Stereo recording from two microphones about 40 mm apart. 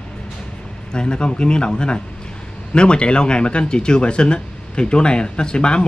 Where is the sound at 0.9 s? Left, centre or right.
Left.